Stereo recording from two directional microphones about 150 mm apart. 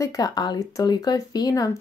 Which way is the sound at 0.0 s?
25° left (ahead or behind).